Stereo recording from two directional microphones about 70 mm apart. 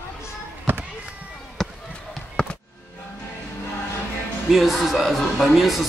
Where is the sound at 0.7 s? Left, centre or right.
Right.